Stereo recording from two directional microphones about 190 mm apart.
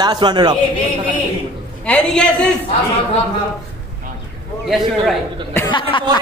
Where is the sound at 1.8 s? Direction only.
5° left (ahead or behind).